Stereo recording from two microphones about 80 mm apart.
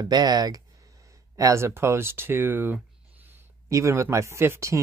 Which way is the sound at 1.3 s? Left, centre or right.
Right.